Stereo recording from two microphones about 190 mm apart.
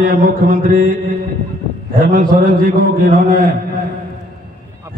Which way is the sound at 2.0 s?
45° right (ahead or behind).